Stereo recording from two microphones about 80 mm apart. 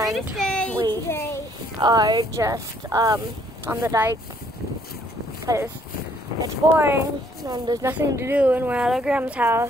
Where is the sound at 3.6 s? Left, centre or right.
Right.